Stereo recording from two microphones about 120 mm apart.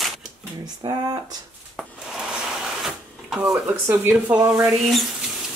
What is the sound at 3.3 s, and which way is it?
Speech, 15° right (ahead or behind).